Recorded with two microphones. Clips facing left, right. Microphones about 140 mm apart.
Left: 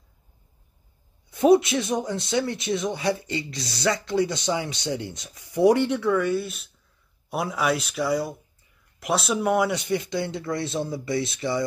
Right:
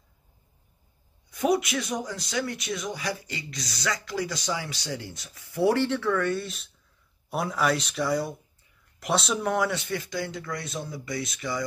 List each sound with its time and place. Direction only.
1.3 s speech: 25° left (ahead or behind)